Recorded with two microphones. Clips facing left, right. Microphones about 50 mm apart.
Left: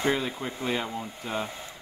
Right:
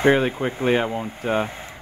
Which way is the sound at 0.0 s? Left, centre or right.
Right.